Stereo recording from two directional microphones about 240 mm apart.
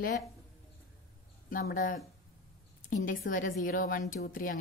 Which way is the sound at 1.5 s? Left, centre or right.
Left.